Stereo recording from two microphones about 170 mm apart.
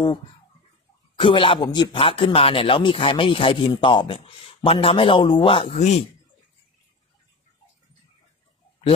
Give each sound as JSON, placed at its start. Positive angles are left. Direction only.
{"t": 1.2, "sound": "speech", "side_deg": 30}